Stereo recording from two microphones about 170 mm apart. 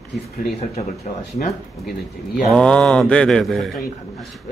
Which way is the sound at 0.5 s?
40° left (ahead or behind).